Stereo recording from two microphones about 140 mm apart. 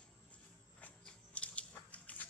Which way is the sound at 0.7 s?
10° left (ahead or behind).